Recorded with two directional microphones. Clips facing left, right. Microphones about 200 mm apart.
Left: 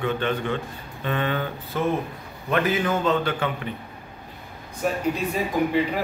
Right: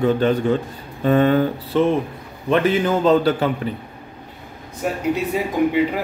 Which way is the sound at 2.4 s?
30° right (ahead or behind).